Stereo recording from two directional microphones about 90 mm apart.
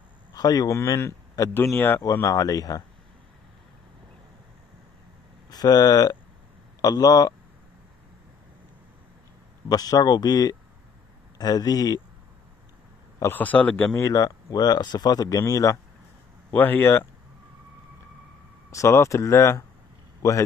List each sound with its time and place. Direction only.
0.3 s speech: 45° left (ahead or behind)
1.5 s speech: 25° left (ahead or behind)
2.2 s speech: 45° left (ahead or behind)
5.5 s speech: 45° left (ahead or behind)
9.7 s speech: 45° left (ahead or behind)
13.3 s speech: 20° left (ahead or behind)
13.9 s speech: 40° left (ahead or behind)
16.4 s speech: 20° left (ahead or behind)
18.7 s speech: 35° left (ahead or behind)